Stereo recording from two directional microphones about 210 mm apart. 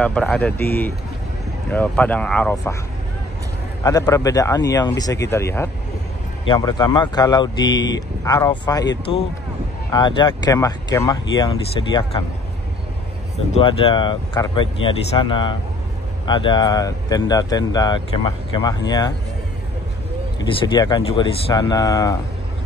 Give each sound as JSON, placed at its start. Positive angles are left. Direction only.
{"t": 0.0, "sound": "speech", "side_deg": 5}
{"t": 3.8, "sound": "speech", "side_deg": 15}
{"t": 9.8, "sound": "speech", "side_deg": 20}
{"t": 13.5, "sound": "speech", "side_deg": 25}
{"t": 20.3, "sound": "speech", "side_deg": 20}